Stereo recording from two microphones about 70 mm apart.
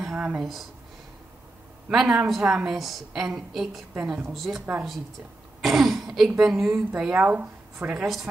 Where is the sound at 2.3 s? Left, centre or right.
Centre.